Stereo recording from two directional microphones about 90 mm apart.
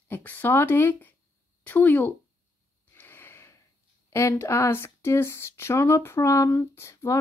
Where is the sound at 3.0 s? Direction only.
25° left (ahead or behind).